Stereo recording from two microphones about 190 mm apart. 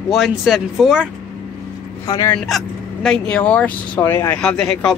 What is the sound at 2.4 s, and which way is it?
Speech, centre (ahead or behind).